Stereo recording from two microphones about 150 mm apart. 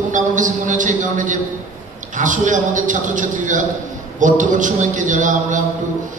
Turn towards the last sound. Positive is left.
turn(degrees=-60)  # may be behind; listen again after turning